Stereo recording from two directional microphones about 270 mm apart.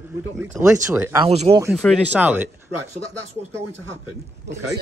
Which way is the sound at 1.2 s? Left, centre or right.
Right.